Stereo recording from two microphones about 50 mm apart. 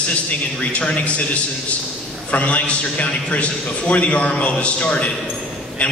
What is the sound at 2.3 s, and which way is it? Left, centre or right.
A man's voice, left.